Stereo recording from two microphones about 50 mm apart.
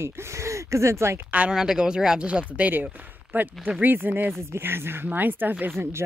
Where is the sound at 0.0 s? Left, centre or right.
Right.